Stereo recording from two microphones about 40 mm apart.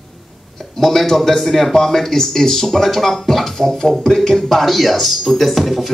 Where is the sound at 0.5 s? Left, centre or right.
Centre.